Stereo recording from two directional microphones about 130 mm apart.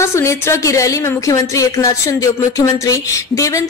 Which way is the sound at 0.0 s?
20° left (ahead or behind).